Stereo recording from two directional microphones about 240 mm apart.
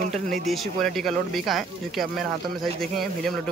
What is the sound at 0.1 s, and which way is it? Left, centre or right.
Speech, centre.